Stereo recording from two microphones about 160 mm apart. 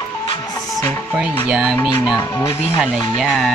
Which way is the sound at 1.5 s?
5° right (ahead or behind).